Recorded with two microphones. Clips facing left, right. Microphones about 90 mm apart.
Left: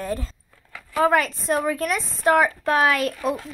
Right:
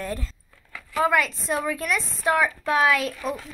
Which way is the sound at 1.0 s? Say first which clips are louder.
Left 3 dB; 40° left (ahead or behind).